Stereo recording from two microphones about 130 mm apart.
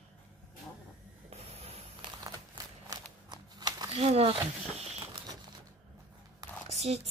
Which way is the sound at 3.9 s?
45° right (ahead or behind).